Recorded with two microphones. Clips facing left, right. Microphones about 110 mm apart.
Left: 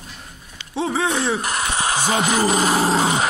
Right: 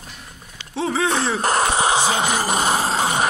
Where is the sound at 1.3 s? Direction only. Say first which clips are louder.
Right 5 dB; 35° right (ahead or behind).